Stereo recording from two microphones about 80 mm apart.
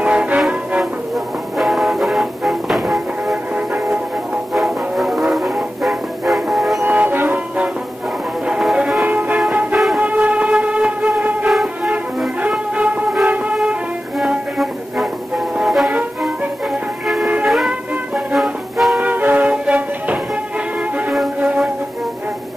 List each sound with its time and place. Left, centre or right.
0.0 s music: centre
1.1 s music: centre
4.6 s music: centre
6.8 s music: right; by 9.0 s centre
9.0 s music: right
9.9 s train: centre
11.4 s music: centre
12.4 s music: centre
17.5 s music: centre
18.9 s music: right